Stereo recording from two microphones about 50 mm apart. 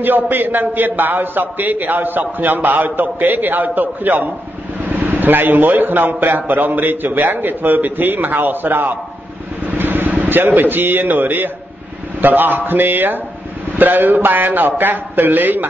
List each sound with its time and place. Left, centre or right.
0.0 s a man's voice: right